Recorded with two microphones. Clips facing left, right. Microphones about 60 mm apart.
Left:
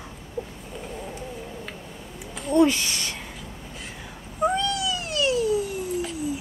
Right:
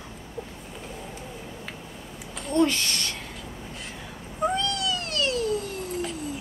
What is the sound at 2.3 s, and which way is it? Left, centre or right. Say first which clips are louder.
Speech: left 3 dB; centre.